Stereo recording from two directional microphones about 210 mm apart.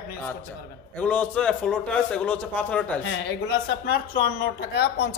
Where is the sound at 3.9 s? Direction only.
45° left (ahead or behind).